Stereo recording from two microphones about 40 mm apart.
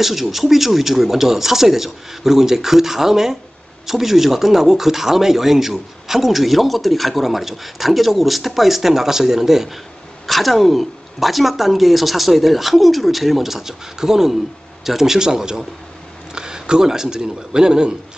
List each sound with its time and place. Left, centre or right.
0.0 s speech: centre
10.2 s speech: centre